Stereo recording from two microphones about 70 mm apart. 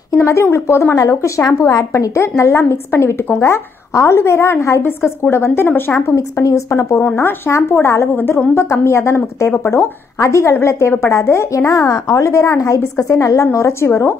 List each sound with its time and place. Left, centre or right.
0.2 s a woman's voice: left
0.9 s a woman's voice: left
6.1 s a woman's voice: left
8.1 s a woman's voice: left
8.5 s a woman's voice: left